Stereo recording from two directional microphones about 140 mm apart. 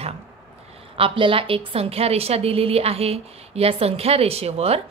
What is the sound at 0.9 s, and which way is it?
A woman's voice, 40° right (ahead or behind).